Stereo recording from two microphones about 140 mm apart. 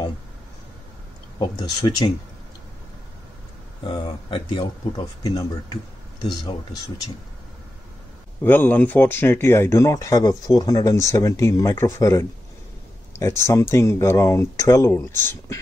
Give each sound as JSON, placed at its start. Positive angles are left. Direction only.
{"t": 1.6, "sound": "speech", "side_deg": 30}
{"t": 3.8, "sound": "speech", "side_deg": 35}
{"t": 8.5, "sound": "speech", "side_deg": 15}
{"t": 13.4, "sound": "speech", "side_deg": 20}